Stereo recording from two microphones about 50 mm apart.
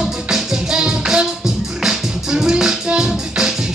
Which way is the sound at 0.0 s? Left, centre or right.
Centre.